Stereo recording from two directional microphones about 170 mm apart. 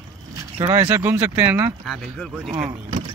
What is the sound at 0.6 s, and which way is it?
Speech, 25° right (ahead or behind).